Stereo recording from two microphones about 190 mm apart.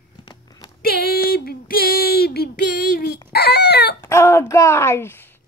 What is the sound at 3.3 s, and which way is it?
Speech, 55° left (ahead or behind).